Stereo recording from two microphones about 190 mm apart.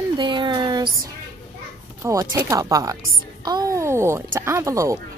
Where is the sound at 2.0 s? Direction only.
15° right (ahead or behind).